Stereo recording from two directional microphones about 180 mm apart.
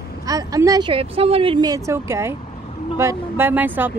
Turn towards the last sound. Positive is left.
turn(degrees=-10)  # may be behind; listen again after turning